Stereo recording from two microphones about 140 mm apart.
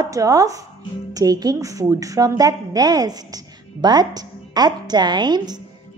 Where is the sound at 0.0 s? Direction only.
25° right (ahead or behind).